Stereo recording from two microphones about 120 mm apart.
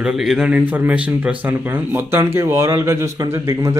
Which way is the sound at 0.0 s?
5° right (ahead or behind).